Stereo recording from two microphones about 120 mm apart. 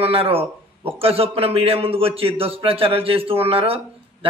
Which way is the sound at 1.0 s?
50° right (ahead or behind).